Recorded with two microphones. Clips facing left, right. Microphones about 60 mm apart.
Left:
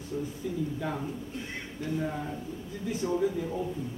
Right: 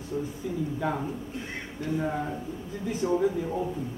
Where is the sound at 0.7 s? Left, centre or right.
Centre.